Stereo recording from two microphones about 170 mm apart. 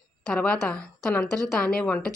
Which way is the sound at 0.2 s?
5° left (ahead or behind).